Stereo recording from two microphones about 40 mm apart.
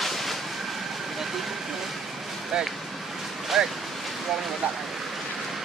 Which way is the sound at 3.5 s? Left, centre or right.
Centre.